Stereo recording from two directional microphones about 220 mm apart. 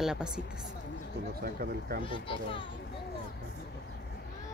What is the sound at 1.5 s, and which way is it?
Speech, 45° right (ahead or behind).